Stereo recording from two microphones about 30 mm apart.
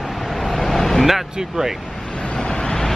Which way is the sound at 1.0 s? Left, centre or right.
Centre.